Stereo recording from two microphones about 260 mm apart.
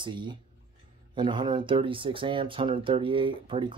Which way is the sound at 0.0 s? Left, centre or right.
Centre.